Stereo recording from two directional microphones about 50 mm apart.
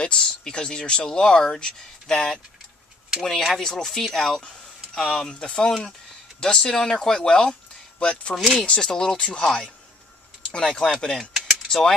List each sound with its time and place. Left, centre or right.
0.0 s speech: centre